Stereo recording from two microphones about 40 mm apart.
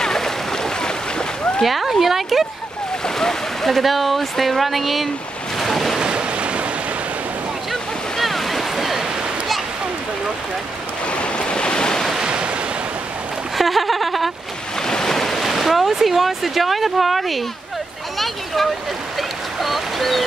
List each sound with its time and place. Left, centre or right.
0.0 s a sound: centre
1.6 s speech: centre
3.2 s speech: centre
5.6 s waves: centre
5.9 s waves: right
7.7 s waves: centre
11.1 s waves: left
13.6 s speech: centre
14.8 s speech: centre
19.1 s a sound: centre